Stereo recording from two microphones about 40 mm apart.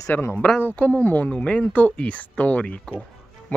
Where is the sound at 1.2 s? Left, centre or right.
Left.